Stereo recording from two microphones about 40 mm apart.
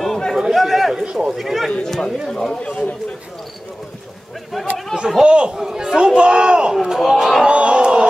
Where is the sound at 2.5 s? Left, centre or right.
Left.